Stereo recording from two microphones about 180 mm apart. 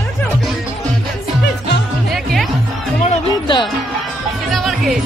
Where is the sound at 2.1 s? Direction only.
Centre (ahead or behind).